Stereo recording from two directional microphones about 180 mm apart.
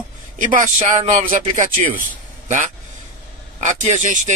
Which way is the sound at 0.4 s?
45° right (ahead or behind).